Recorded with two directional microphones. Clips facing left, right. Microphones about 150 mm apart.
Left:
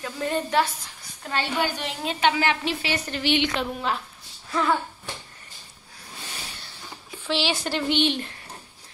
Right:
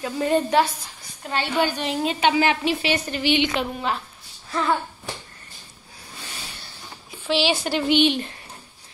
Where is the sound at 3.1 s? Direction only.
5° right (ahead or behind).